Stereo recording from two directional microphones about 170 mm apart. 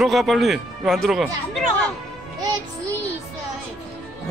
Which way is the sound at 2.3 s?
25° right (ahead or behind).